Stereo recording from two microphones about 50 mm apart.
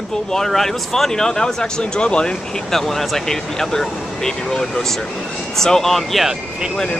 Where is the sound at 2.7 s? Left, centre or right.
Centre.